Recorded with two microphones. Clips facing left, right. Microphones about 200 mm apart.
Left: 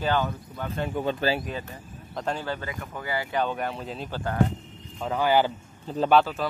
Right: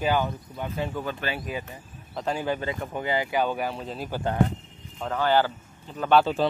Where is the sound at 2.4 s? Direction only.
15° right (ahead or behind).